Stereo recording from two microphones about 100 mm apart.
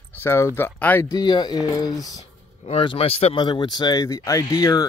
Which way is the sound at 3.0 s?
90° left.